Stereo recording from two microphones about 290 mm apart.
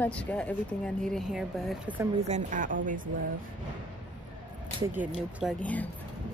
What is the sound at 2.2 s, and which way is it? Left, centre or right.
Speech, right.